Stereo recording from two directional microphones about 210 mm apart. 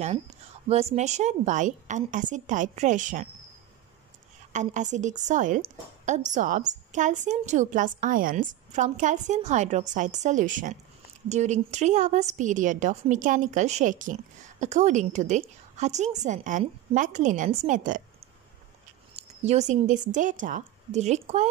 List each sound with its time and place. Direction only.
0.9 s a woman's voice: 35° right (ahead or behind)
4.5 s a woman's voice: 35° right (ahead or behind)
19.1 s a woman's voice: 30° right (ahead or behind)